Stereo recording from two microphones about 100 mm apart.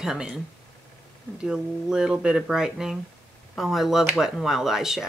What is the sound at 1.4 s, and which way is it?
Speech, 5° right (ahead or behind).